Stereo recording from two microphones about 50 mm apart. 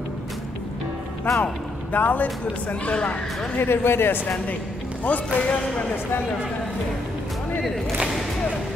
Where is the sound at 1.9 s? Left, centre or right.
Left.